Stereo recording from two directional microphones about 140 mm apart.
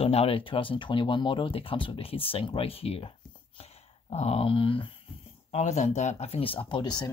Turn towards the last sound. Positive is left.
turn(degrees=30)  # may be behind; listen again after turning